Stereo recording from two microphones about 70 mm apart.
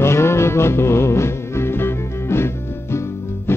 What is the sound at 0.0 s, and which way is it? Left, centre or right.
Music, left.